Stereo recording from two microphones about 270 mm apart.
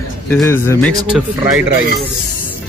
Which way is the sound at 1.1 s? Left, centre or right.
Centre.